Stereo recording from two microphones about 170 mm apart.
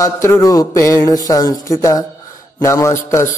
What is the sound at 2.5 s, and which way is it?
Music, 20° left (ahead or behind).